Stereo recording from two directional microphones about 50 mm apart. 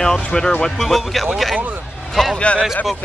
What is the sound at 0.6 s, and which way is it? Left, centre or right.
A man's voice, centre.